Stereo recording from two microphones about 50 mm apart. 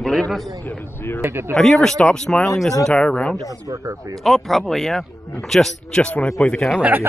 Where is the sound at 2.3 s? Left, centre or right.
Centre.